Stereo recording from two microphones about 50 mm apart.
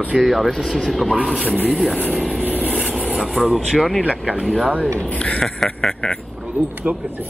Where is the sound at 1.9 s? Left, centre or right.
Right.